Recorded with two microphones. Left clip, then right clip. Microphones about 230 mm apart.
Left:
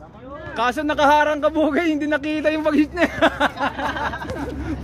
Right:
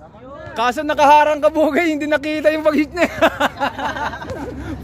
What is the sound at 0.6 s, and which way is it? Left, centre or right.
Speech, right.